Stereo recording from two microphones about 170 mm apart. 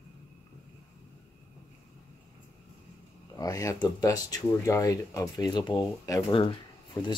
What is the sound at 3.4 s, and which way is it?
Speech, 20° left (ahead or behind).